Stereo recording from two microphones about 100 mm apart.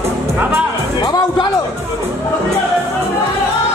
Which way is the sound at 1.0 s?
40° left (ahead or behind).